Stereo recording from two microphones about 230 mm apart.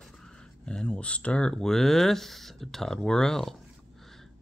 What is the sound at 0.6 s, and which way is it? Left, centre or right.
Speech, centre.